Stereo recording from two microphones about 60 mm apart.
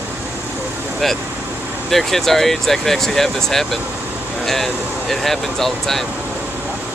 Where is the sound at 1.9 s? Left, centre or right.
Centre.